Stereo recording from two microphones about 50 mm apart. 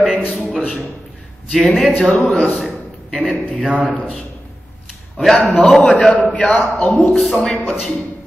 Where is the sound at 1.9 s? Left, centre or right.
Left.